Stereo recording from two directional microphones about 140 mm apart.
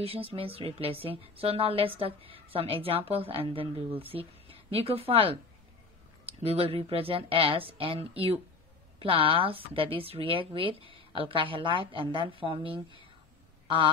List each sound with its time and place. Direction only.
0.0 s a woman's voice: 45° right (ahead or behind)